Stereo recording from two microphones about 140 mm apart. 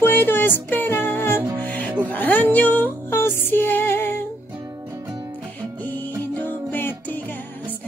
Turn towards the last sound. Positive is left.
turn(degrees=15)  # may be behind; listen again after turning